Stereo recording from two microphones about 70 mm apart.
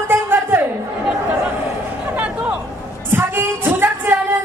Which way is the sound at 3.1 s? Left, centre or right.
Right.